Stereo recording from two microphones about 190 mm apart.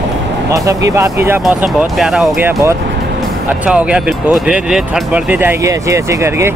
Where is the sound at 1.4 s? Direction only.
Centre (ahead or behind).